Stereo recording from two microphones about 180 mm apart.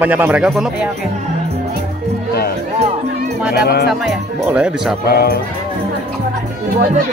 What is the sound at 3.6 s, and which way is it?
Speech, 60° left (ahead or behind).